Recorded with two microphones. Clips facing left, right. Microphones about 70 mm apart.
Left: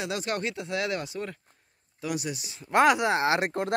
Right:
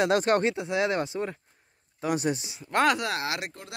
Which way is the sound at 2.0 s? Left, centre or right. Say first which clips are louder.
Right 5 dB; right.